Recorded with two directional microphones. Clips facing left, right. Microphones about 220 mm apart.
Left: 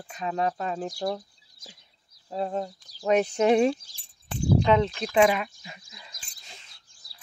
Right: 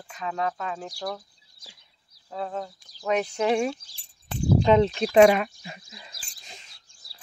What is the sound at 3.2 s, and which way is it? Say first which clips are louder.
Speech: left 4 dB; 20° left (ahead or behind).